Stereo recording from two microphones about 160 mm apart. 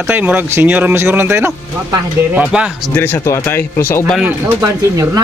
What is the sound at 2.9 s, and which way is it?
Speech, 15° left (ahead or behind).